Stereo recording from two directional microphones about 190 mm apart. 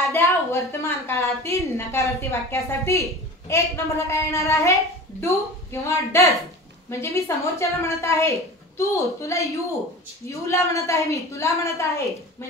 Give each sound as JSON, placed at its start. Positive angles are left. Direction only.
{"t": 0.1, "sound": "a woman's voice", "side_deg": 10}